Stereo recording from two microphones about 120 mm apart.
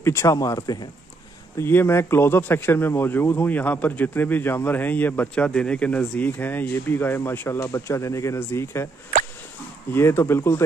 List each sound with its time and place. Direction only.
0.0 s speech: 20° left (ahead or behind)
1.6 s speech: 20° left (ahead or behind)
9.9 s speech: 20° left (ahead or behind)